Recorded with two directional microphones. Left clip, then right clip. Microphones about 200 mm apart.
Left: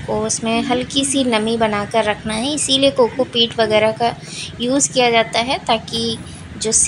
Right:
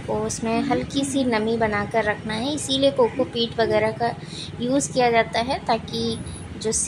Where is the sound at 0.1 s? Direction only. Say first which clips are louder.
Left 5 dB; 20° left (ahead or behind).